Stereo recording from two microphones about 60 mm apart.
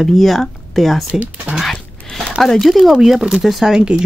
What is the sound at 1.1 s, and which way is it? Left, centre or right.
Speech, right.